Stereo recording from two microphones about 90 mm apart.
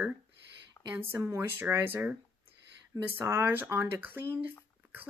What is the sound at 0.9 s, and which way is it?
Speech, 25° right (ahead or behind).